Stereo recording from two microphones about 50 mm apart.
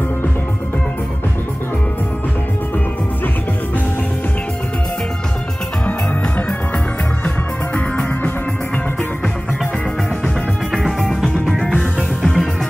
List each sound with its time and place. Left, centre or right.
7.2 s music: left
10.2 s music: centre
12.2 s music: centre